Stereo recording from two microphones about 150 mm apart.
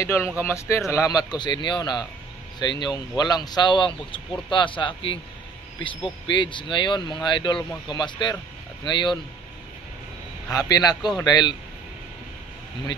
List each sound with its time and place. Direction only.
0.0 s a man's voice: 20° left (ahead or behind); by 5.1 s 35° left (ahead or behind)
6.3 s a man's voice: 30° left (ahead or behind)
10.5 s a man's voice: 25° left (ahead or behind)